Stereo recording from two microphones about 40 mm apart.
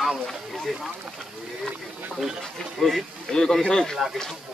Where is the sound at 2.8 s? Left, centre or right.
Centre.